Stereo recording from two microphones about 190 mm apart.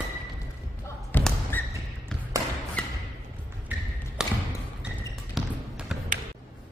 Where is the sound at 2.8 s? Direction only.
5° left (ahead or behind).